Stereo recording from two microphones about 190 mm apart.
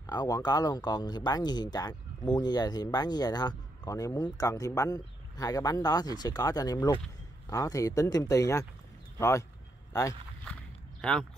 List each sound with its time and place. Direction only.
0.0 s speech: 20° left (ahead or behind)
11.0 s speech: 5° left (ahead or behind)